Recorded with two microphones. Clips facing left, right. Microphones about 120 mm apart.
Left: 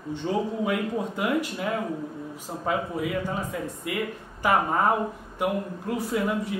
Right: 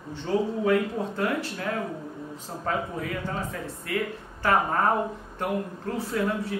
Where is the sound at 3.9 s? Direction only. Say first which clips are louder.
Right 3 dB; 15° left (ahead or behind).